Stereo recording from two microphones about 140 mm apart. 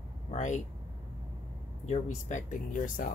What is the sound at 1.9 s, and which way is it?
Speech, 60° left (ahead or behind).